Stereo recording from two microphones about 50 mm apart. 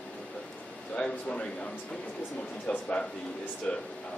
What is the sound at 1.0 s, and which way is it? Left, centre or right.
A man's voice, left.